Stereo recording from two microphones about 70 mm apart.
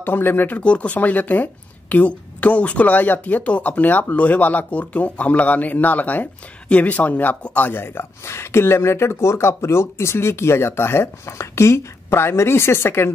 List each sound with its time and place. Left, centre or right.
0.0 s speech: left